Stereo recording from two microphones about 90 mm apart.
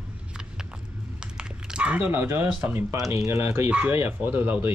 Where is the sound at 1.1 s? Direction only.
10° right (ahead or behind).